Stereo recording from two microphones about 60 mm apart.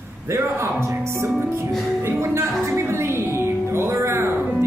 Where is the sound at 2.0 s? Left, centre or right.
Right.